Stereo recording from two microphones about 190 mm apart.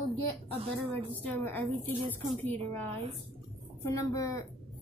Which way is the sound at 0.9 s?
10° left (ahead or behind).